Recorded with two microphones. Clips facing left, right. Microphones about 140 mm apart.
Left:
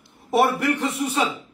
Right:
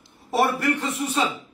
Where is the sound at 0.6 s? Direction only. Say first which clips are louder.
Left 1 dB; 20° left (ahead or behind).